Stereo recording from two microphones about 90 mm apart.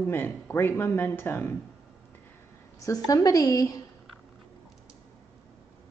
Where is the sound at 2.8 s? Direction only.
45° left (ahead or behind).